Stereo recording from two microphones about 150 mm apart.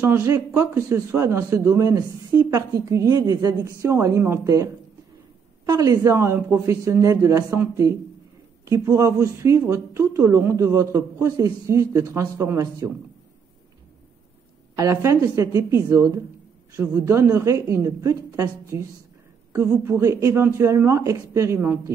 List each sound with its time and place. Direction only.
0.0 s speech: 15° right (ahead or behind)
5.7 s speech: 20° right (ahead or behind)
14.8 s speech: 20° right (ahead or behind)